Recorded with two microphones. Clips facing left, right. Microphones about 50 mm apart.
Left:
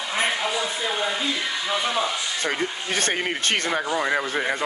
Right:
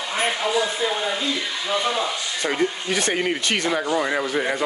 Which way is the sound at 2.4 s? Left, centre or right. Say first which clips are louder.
Right 5 dB; left.